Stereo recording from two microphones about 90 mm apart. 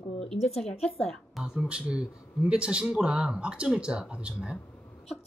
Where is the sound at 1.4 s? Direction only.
5° right (ahead or behind).